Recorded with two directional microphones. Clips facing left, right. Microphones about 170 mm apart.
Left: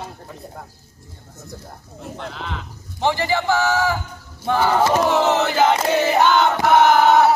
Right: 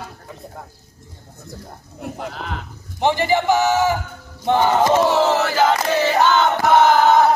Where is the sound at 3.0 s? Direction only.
20° right (ahead or behind).